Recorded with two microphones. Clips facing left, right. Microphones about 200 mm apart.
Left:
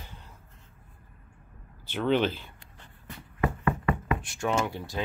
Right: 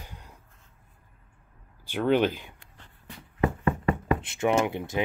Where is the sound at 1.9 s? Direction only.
10° right (ahead or behind).